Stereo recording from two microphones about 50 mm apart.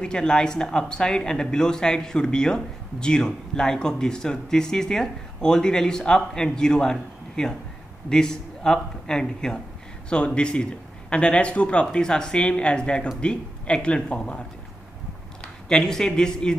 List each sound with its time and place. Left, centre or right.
0.0 s a man's voice: centre
15.7 s speech: centre